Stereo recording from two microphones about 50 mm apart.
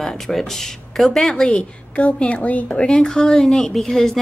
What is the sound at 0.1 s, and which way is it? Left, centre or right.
A woman's voice, centre.